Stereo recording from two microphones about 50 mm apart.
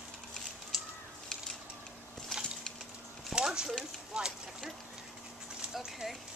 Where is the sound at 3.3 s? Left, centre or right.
Centre.